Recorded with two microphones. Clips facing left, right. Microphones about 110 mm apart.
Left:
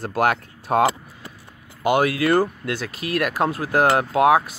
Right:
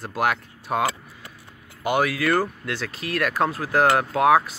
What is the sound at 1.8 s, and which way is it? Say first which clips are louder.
Speech: left 3 dB; 20° left (ahead or behind).